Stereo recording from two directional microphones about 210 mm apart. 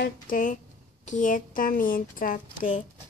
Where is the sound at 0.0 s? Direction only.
40° left (ahead or behind).